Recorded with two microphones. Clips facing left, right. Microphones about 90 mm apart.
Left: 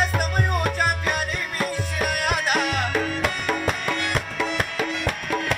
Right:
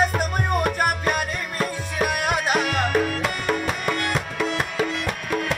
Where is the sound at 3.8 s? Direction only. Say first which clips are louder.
Right 1 dB; 30° right (ahead or behind).